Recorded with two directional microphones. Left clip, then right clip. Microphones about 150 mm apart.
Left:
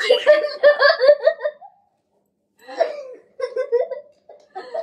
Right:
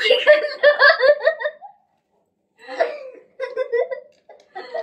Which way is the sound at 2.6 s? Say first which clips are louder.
Even; centre (ahead or behind).